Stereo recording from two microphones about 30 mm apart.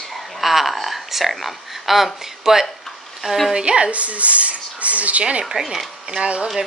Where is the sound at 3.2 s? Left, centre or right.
Centre.